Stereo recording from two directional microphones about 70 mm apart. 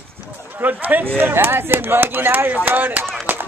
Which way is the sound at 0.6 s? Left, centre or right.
Right.